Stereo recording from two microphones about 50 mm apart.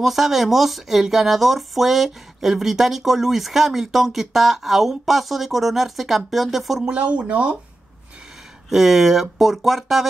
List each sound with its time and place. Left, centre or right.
0.0 s speech: centre
7.0 s speech: right
8.6 s speech: centre